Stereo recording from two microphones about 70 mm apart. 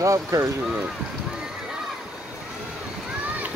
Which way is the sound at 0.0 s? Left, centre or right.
Right.